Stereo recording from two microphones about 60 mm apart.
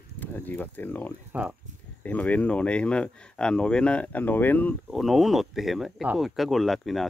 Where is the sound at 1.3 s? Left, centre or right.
Right.